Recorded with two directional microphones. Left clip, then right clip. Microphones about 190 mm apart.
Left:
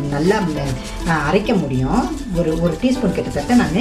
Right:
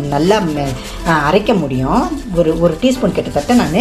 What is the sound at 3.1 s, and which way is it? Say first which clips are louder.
Speech: right 4 dB; centre (ahead or behind).